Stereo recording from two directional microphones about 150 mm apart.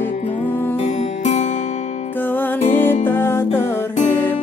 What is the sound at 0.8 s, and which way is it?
Music, 50° left (ahead or behind).